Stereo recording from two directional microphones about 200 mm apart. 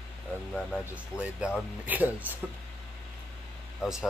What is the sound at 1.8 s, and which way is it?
Speech, 10° right (ahead or behind).